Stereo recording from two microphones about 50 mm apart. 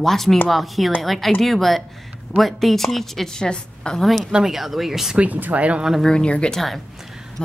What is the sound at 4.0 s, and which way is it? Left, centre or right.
Speech, centre.